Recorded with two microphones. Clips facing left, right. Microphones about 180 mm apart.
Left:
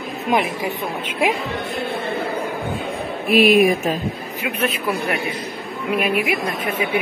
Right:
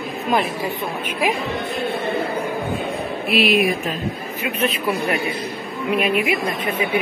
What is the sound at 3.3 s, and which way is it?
Speech, 50° left (ahead or behind).